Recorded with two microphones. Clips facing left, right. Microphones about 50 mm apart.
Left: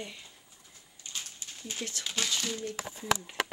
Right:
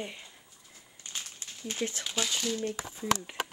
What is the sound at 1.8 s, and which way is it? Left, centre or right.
Speech, centre.